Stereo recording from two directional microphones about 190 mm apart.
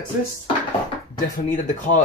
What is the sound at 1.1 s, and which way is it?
Speech, 45° left (ahead or behind).